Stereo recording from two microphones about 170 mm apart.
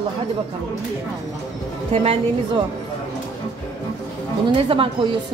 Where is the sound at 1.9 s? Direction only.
35° right (ahead or behind).